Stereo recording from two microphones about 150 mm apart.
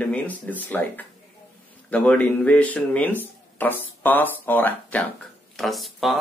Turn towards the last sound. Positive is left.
turn(degrees=0)  # may be behind; listen again after turning